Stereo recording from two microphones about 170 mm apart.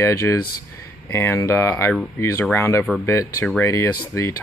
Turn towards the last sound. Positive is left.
turn(degrees=15)  # may be behind; listen again after turning